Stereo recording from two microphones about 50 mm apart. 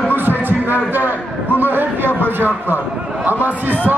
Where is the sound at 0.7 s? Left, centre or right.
Right.